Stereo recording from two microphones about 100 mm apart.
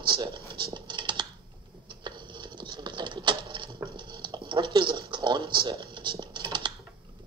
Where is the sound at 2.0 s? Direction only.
50° right (ahead or behind).